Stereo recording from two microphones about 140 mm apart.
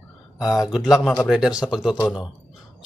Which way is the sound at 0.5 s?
5° right (ahead or behind).